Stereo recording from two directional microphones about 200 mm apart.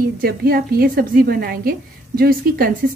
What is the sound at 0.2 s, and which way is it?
Speech, 50° right (ahead or behind).